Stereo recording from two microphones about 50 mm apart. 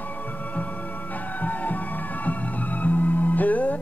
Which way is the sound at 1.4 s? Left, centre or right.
Left.